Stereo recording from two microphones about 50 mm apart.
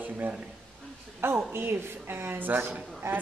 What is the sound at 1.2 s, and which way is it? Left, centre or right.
A woman's voice, right.